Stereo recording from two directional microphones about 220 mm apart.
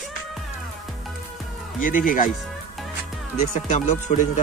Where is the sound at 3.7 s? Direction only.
35° left (ahead or behind).